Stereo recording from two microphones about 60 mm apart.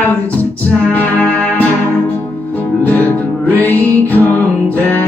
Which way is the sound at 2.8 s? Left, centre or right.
Left.